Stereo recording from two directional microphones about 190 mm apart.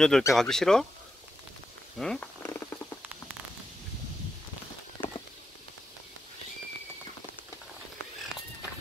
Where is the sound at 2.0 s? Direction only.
5° left (ahead or behind).